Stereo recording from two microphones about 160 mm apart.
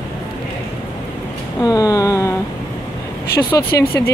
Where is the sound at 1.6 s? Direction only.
20° left (ahead or behind).